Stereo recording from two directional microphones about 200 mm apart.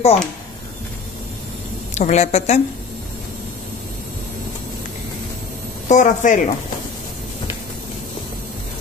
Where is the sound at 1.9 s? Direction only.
35° left (ahead or behind).